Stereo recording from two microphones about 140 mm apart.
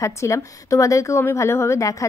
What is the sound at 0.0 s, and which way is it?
A woman's voice, 20° left (ahead or behind).